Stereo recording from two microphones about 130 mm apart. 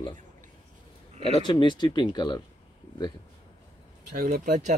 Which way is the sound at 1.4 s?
35° left (ahead or behind).